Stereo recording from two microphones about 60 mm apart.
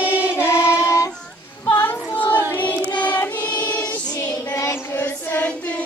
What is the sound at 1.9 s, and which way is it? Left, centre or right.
Child singing, left.